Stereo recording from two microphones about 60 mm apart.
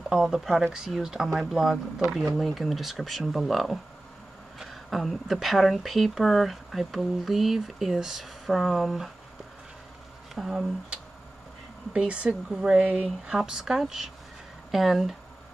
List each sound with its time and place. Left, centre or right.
0.1 s speech: centre
10.3 s speech: centre
11.9 s speech: centre
13.4 s speech: centre